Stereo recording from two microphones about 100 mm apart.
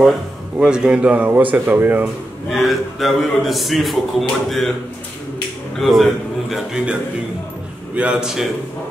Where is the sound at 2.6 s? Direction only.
Centre (ahead or behind).